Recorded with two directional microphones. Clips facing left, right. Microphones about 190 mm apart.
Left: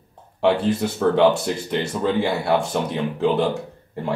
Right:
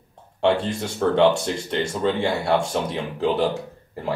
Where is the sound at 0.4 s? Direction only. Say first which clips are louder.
Left 2 dB; 5° left (ahead or behind).